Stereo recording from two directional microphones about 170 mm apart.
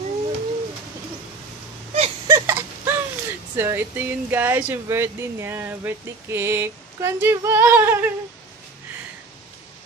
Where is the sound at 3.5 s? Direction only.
10° right (ahead or behind).